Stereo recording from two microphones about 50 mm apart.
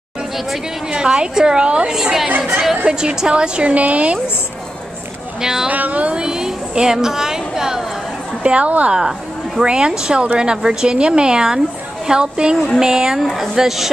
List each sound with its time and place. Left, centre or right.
0.8 s speech: centre
2.0 s a woman's voice: centre; by 4.2 s right
5.4 s speech: centre
5.7 s a woman's voice: right
6.1 s a woman's voice: centre
8.4 s a woman's voice: right; by 13.8 s centre